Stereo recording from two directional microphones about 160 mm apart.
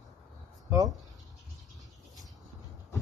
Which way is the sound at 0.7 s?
20° right (ahead or behind).